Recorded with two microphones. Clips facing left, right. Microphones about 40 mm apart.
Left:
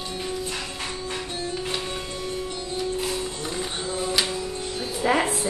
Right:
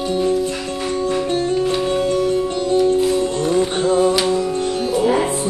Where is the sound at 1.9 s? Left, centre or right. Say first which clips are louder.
Right 14 dB; right.